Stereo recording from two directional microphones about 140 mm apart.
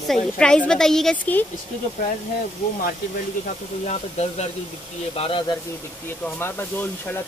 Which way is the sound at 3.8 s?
50° left (ahead or behind).